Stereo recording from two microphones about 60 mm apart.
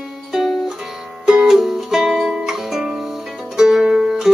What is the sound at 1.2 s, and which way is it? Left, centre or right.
Music, centre.